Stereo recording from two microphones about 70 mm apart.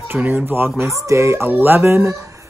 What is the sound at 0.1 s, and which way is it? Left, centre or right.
Speech, right.